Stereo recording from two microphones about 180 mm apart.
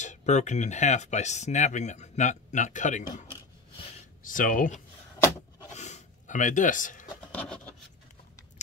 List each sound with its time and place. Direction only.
0.0 s speech: 40° left (ahead or behind)
4.2 s speech: 50° left (ahead or behind)
5.7 s a sound: 40° left (ahead or behind)
7.3 s rub: 5° left (ahead or behind)